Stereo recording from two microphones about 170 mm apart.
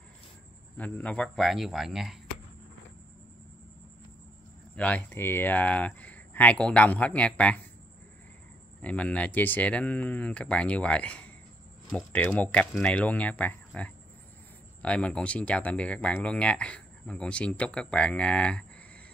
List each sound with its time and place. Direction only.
0.7 s speech: 10° left (ahead or behind)
4.7 s speech: 10° left (ahead or behind)
8.8 s speech: 5° left (ahead or behind)